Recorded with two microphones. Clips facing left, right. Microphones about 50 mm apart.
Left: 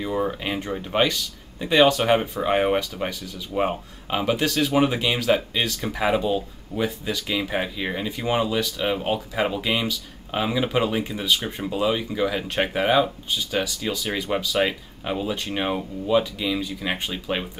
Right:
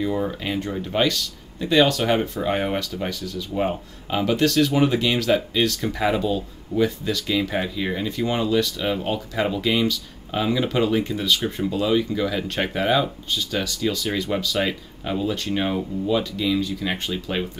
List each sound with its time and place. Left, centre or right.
0.0 s speech: centre